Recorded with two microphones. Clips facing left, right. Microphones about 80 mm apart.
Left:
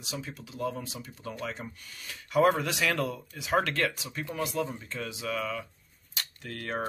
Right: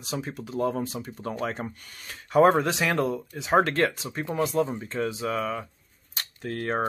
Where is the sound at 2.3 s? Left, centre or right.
Right.